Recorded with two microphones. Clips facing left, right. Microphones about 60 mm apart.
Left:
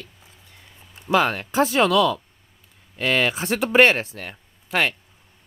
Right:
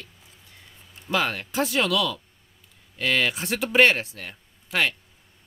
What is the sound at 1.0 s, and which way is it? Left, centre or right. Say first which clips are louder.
Speech: left 6 dB; left.